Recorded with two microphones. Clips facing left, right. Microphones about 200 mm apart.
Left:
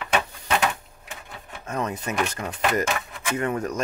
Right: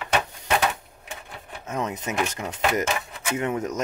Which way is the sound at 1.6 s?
20° right (ahead or behind).